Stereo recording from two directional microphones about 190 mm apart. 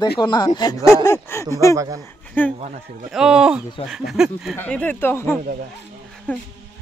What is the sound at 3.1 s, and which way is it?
Speech, 5° right (ahead or behind).